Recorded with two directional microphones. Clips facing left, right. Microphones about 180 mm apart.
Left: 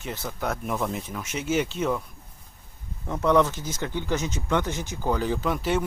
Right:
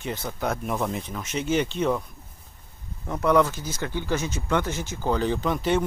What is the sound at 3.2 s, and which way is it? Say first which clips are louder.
Speech: even; 20° left (ahead or behind).